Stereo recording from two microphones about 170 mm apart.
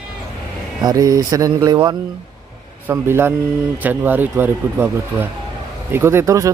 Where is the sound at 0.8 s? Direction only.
20° right (ahead or behind).